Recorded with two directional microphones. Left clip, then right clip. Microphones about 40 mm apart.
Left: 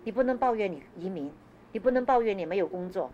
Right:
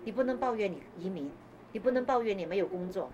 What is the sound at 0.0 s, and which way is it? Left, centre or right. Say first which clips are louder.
A woman's voice: left 5 dB; left.